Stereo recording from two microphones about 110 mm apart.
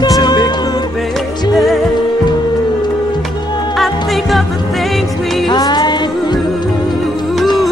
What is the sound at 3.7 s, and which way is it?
Music, centre (ahead or behind).